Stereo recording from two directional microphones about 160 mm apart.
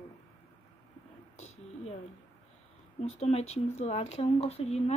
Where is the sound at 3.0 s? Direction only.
40° left (ahead or behind).